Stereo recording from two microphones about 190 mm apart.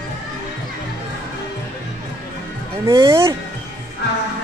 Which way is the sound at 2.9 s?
15° right (ahead or behind).